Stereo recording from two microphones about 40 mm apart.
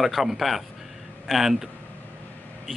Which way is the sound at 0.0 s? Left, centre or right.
Centre.